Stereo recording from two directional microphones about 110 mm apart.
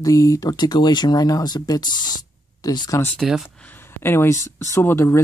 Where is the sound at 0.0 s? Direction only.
30° left (ahead or behind).